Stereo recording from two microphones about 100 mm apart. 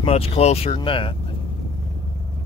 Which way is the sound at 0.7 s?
60° left (ahead or behind).